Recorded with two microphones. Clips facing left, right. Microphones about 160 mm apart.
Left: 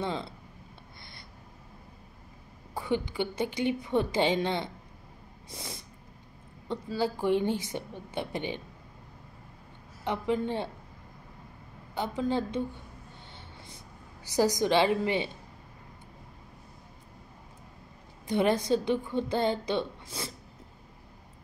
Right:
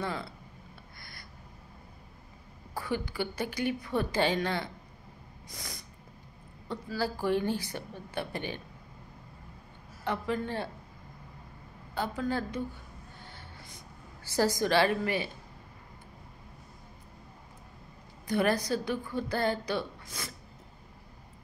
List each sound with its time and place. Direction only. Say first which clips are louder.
0.0 s a sound: left 2 dB; 25° left (ahead or behind)
2.7 s a woman's voice: left 3 dB; 20° left (ahead or behind)
10.0 s a woman's voice: left 3 dB; 20° left (ahead or behind)
11.9 s a woman's voice: left 2 dB; 20° left (ahead or behind)
13.3 s a sound: left 1 dB; 25° left (ahead or behind)
14.2 s a woman's voice: left 2 dB; 15° left (ahead or behind)
18.2 s a woman's voice: left 2 dB; 20° left (ahead or behind)